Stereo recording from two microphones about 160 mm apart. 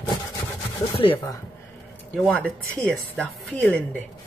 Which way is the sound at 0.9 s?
35° left (ahead or behind).